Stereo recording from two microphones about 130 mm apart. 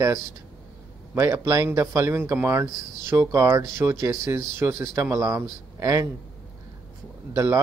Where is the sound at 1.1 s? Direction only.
20° right (ahead or behind).